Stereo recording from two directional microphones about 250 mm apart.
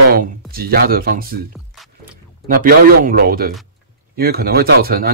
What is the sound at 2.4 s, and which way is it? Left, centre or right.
Speech, right.